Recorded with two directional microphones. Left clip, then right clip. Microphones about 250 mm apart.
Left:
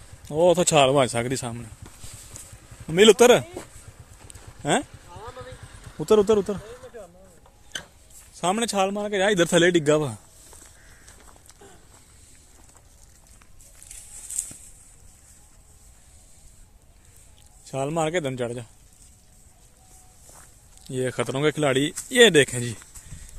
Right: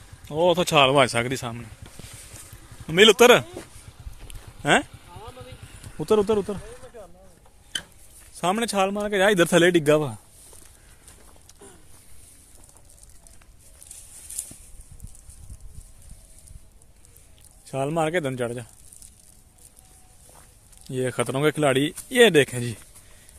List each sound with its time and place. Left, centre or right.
0.3 s speech: centre
0.8 s speech: centre
2.9 s speech: centre
4.8 s a sound: right
5.9 s speech: centre
8.3 s speech: centre
10.0 s a sound: centre
13.8 s a sound: centre
17.6 s speech: centre
20.8 s speech: centre